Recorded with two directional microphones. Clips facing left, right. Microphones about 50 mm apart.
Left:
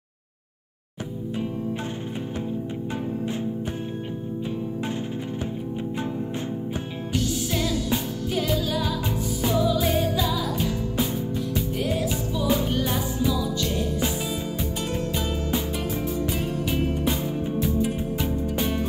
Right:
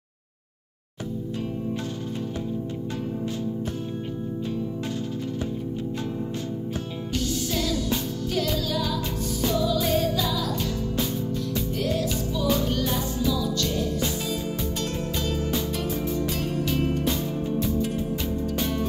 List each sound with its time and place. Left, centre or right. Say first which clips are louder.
7.1 s music: left 2 dB; centre